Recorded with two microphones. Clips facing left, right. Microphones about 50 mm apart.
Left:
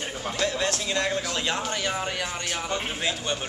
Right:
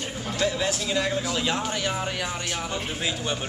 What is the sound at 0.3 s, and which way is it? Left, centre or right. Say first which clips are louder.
Speech: right 1 dB; centre.